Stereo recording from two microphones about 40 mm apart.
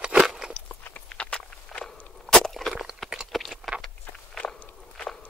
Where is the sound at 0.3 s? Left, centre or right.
Centre.